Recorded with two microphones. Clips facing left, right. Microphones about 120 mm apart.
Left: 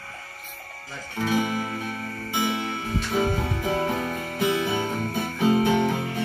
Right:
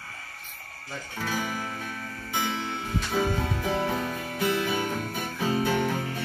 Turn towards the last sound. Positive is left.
turn(degrees=15)  # may be behind; listen again after turning